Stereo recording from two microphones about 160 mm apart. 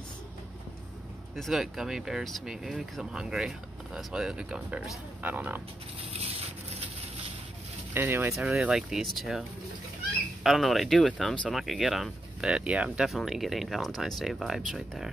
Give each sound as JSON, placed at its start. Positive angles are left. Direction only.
{"t": 1.3, "sound": "speech", "side_deg": 0}
{"t": 6.2, "sound": "a sound", "side_deg": -40}
{"t": 7.9, "sound": "speech", "side_deg": -15}
{"t": 10.4, "sound": "speech", "side_deg": 0}